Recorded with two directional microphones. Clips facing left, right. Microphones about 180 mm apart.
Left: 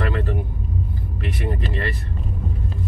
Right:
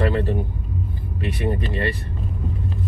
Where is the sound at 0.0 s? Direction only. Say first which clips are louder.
Right 3 dB; 25° right (ahead or behind).